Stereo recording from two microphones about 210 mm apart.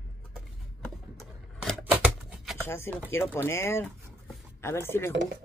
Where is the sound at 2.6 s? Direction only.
10° left (ahead or behind).